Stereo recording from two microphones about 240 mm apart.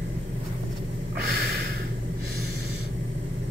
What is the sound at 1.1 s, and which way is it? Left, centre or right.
Snort, right.